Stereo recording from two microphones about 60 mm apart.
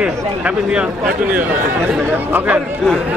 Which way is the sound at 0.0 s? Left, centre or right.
Centre.